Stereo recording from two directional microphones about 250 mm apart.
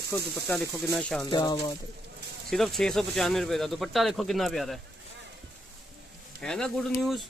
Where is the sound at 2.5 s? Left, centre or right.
Centre.